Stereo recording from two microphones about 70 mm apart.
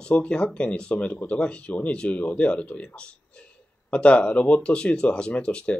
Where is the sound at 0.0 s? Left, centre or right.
Centre.